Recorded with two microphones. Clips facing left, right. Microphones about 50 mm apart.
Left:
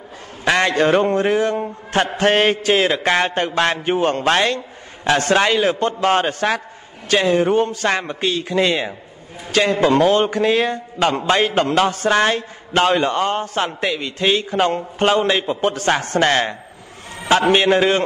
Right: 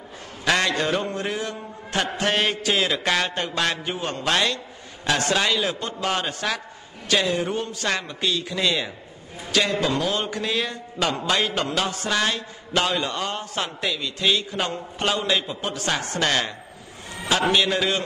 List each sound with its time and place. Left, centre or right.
0.5 s a man's voice: left